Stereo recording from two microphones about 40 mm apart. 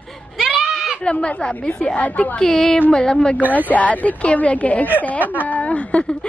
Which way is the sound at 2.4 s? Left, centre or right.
Left.